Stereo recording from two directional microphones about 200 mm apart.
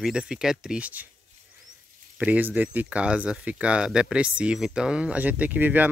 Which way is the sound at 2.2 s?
5° right (ahead or behind).